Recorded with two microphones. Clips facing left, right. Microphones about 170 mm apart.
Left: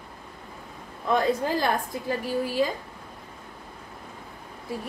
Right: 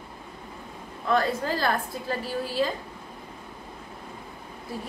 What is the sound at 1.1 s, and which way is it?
A woman's voice, 15° left (ahead or behind).